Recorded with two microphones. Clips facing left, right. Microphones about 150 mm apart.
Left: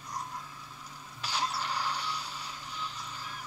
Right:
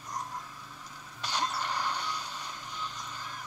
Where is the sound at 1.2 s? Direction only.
10° left (ahead or behind).